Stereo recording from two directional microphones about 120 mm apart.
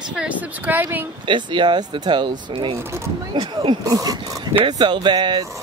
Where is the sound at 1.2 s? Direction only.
40° right (ahead or behind).